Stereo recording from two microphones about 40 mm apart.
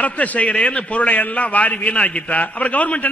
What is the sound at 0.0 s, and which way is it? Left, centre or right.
A man's voice, left.